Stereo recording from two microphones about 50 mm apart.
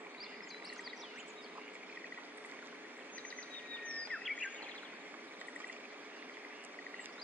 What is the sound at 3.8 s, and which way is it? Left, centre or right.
Bird vocalization, left.